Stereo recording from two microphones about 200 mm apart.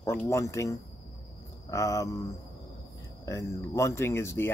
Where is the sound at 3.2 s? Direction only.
15° left (ahead or behind).